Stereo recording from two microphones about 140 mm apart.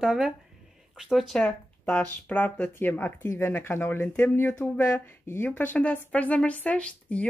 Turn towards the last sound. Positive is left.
turn(degrees=10)  # may be behind; listen again after turning